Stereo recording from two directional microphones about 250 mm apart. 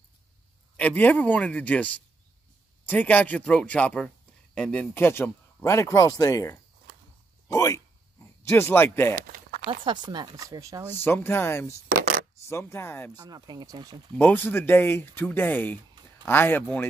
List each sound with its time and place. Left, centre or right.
0.7 s a man's voice: centre
9.8 s speech: centre
10.9 s speech: centre
13.1 s speech: centre
14.1 s speech: centre